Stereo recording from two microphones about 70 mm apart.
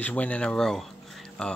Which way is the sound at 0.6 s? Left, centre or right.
Centre.